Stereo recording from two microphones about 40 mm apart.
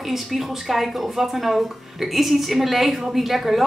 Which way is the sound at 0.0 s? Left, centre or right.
Centre.